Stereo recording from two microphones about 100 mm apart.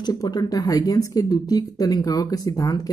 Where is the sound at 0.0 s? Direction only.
45° left (ahead or behind).